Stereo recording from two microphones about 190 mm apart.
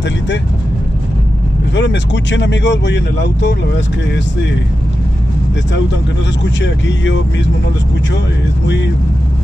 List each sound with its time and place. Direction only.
1.8 s speech: 70° left (ahead or behind)
6.4 s speech: 70° left (ahead or behind)